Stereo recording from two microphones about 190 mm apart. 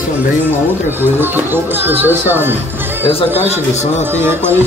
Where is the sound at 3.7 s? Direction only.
35° left (ahead or behind).